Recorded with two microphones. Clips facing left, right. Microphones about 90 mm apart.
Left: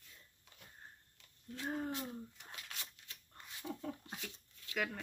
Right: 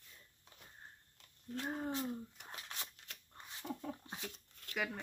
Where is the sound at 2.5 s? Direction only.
30° right (ahead or behind).